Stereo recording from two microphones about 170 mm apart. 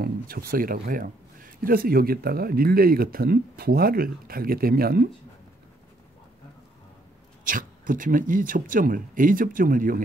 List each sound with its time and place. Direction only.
0.0 s speech: 60° right (ahead or behind)
7.4 s speech: 50° right (ahead or behind)